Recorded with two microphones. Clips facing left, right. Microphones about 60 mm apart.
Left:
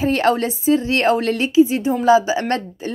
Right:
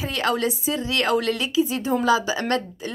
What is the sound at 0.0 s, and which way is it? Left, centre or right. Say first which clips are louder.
Speech: left 6 dB; left.